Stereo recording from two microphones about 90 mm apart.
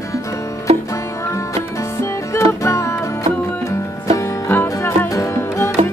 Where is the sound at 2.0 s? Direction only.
30° left (ahead or behind).